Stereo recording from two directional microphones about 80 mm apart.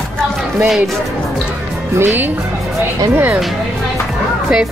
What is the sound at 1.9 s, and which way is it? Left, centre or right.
Speech, right.